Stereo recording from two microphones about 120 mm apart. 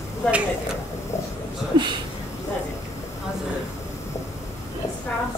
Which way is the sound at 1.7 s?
35° right (ahead or behind).